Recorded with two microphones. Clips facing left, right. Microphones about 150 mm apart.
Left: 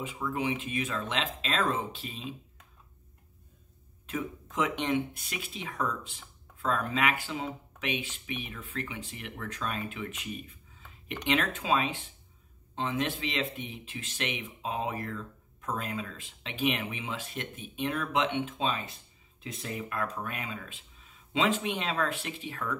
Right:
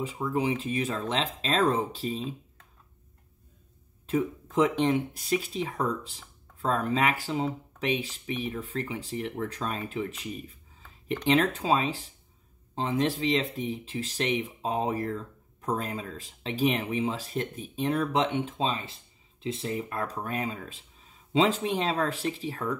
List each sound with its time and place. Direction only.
0.0 s speech: 30° right (ahead or behind)
4.0 s speech: 35° right (ahead or behind)